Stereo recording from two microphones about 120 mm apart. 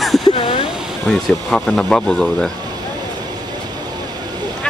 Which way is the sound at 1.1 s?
5° left (ahead or behind).